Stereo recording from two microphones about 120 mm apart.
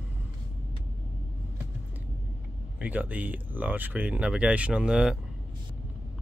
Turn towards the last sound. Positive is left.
turn(degrees=-10)  # may be behind; listen again after turning